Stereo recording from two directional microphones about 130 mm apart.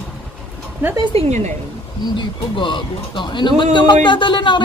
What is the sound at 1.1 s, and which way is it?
Speech, 60° right (ahead or behind).